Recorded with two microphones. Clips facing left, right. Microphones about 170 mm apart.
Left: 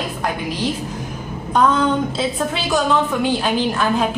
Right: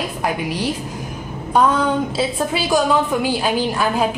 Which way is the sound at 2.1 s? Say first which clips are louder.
Right 1 dB; 10° right (ahead or behind).